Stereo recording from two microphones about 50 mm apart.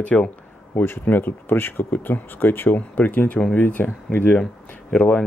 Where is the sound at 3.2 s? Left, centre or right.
Left.